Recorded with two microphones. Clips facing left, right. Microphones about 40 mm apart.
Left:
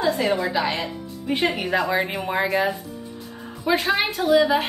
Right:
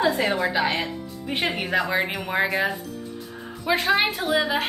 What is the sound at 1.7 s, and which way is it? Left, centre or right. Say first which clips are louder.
A woman's voice: left 1 dB; centre.